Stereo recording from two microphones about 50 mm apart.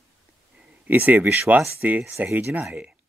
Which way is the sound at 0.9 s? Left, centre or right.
Right.